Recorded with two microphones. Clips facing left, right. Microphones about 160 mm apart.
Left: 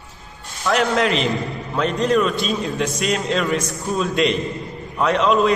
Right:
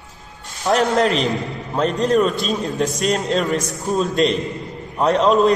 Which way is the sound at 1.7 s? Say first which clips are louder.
Right 1 dB; 40° right (ahead or behind).